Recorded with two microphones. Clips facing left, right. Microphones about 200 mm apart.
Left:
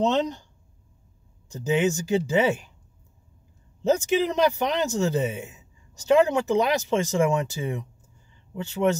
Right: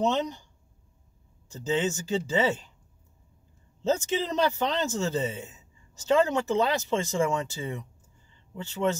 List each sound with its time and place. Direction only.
1.5 s a man's voice: 15° left (ahead or behind)
3.8 s a man's voice: 15° left (ahead or behind)